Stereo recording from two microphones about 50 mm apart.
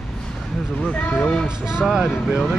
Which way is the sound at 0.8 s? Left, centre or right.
Left.